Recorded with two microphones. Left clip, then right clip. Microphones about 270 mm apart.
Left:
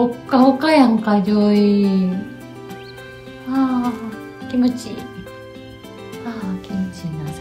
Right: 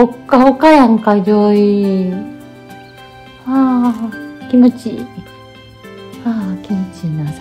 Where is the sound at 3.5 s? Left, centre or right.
Right.